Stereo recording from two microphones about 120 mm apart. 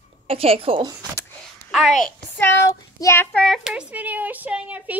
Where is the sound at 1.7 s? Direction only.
Centre (ahead or behind).